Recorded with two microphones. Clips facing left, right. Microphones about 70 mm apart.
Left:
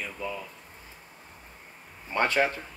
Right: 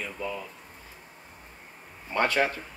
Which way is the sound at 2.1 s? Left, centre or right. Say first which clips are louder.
Even; left.